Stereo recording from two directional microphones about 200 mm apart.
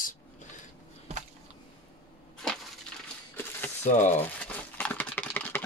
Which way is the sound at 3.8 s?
35° left (ahead or behind).